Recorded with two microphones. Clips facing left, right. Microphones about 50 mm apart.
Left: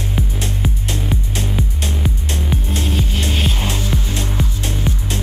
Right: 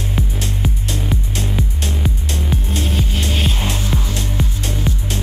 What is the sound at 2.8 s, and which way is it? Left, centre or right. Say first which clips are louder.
Music: even; centre.